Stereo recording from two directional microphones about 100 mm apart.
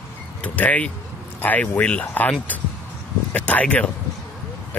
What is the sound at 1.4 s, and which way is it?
Speech, 15° left (ahead or behind).